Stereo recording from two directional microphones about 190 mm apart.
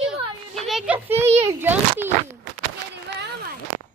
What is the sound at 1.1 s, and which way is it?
Speech, 35° right (ahead or behind).